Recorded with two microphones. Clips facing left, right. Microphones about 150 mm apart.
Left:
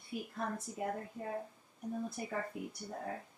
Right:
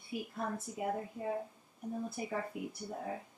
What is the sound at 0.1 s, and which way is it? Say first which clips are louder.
A woman's voice: right 1 dB; 5° right (ahead or behind).